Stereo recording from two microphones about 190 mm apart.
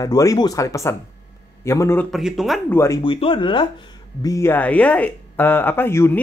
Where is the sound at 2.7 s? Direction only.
15° left (ahead or behind).